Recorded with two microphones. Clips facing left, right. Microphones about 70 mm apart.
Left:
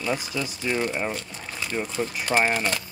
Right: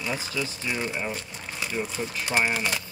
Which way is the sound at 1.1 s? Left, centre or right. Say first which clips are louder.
Left 2 dB; centre.